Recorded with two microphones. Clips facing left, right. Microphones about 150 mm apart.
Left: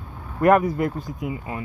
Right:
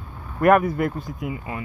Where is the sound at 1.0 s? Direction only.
45° left (ahead or behind).